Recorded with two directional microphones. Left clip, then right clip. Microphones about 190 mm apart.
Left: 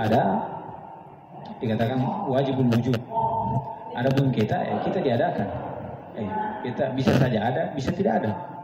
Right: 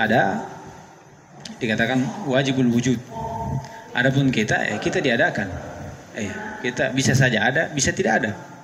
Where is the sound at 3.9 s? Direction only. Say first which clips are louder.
Right 5 dB; 50° right (ahead or behind).